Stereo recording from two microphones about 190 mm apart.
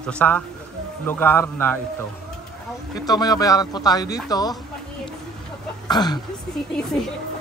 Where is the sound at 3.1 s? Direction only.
20° left (ahead or behind).